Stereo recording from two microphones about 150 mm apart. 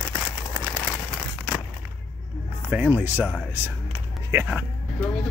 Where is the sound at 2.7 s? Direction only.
10° right (ahead or behind).